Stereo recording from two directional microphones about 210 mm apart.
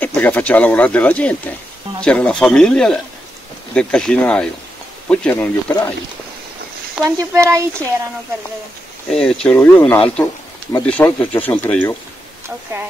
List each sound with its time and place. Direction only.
0.0 s speech: 10° left (ahead or behind)
7.1 s speech: 15° right (ahead or behind)
9.1 s speech: 5° left (ahead or behind)